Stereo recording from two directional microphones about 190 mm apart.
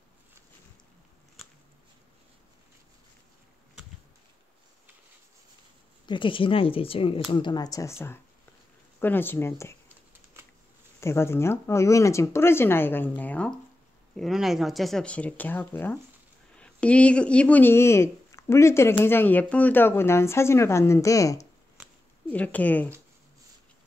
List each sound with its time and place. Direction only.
6.0 s speech: 25° left (ahead or behind)
11.0 s speech: 15° left (ahead or behind)